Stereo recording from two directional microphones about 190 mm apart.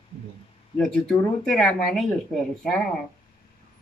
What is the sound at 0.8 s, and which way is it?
Speech, centre (ahead or behind).